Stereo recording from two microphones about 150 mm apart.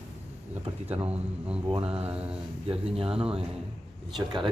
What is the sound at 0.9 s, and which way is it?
Speech, 10° right (ahead or behind).